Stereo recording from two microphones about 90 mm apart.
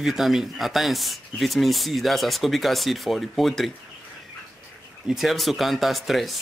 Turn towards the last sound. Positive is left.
turn(degrees=0)  # may be behind; listen again after turning